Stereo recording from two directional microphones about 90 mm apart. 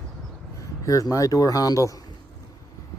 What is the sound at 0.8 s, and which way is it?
Speech, 40° left (ahead or behind).